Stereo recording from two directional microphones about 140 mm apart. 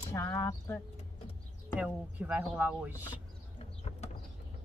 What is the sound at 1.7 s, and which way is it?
Speech, 10° right (ahead or behind).